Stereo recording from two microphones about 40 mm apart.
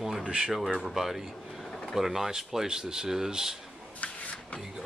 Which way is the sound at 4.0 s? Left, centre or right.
Left.